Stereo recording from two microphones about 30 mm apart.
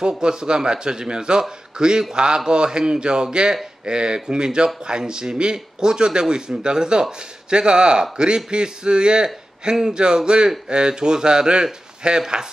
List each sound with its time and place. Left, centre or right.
0.2 s a man's voice: right